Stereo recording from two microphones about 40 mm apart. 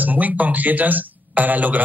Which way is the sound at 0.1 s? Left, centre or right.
Right.